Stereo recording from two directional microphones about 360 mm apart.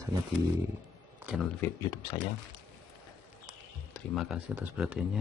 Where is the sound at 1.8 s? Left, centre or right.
Centre.